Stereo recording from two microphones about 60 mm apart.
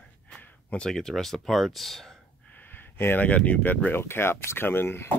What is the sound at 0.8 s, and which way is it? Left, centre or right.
Speech, centre.